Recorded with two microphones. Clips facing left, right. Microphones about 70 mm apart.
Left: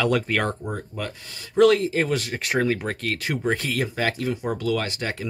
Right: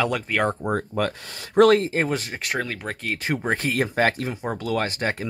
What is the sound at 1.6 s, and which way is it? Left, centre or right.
Speech, right.